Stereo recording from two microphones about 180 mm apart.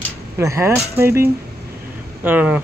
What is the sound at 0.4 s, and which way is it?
Speech, 15° right (ahead or behind).